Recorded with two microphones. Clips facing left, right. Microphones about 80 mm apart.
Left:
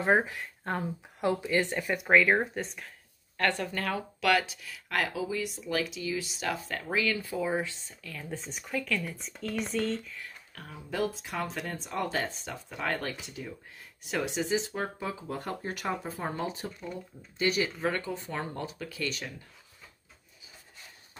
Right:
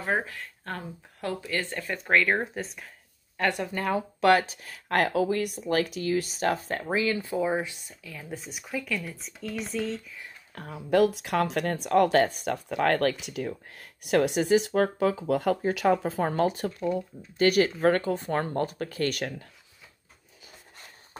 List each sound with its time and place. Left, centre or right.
0.0 s speech: centre
3.3 s speech: centre
4.2 s speech: right; by 10.1 s centre
10.7 s speech: right